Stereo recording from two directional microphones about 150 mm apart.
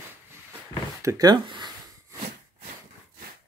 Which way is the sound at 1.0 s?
25° right (ahead or behind).